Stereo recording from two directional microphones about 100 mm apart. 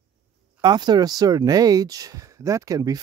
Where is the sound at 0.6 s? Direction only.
45° right (ahead or behind).